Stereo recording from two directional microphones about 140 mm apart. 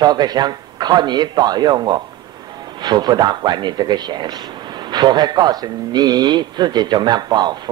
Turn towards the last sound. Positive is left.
turn(degrees=-30)  # may be behind; listen again after turning